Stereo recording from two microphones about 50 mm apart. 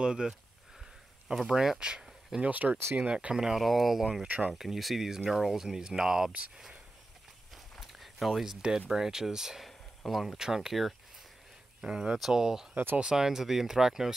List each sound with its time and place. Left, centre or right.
0.0 s speech: centre
2.5 s speech: right
3.0 s speech: right
3.5 s speech: centre
7.8 s speech: centre
11.8 s speech: centre